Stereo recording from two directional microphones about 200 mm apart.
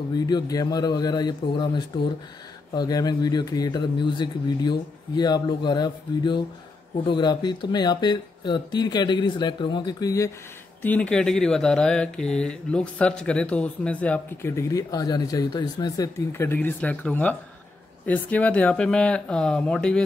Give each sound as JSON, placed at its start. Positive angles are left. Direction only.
{"t": 0.1, "sound": "speech", "side_deg": 20}
{"t": 2.7, "sound": "speech", "side_deg": 20}